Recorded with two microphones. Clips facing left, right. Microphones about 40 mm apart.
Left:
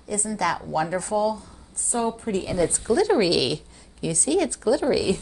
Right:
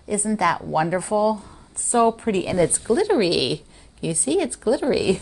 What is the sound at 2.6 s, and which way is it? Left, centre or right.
A woman's voice, centre.